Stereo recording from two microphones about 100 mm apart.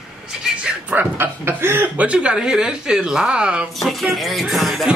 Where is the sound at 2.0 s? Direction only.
10° right (ahead or behind).